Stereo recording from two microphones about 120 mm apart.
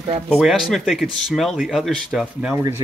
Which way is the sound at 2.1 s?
10° right (ahead or behind).